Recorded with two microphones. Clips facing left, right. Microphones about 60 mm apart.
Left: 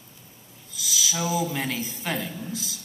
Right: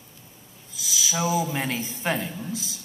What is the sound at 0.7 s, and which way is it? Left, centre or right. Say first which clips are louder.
A man's voice: right 1 dB; right.